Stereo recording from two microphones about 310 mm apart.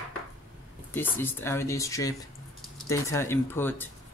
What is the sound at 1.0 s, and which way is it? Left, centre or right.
Speech, centre.